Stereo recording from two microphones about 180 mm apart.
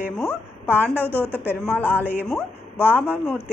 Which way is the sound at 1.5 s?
10° left (ahead or behind).